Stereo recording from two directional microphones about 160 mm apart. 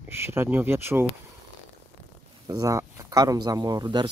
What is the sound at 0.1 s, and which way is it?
Speech, 15° right (ahead or behind).